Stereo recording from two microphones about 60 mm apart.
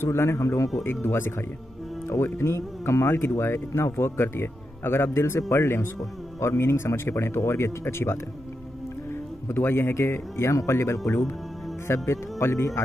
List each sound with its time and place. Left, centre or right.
0.0 s speech: left
1.0 s speech: left
10.5 s speech: left
11.9 s speech: left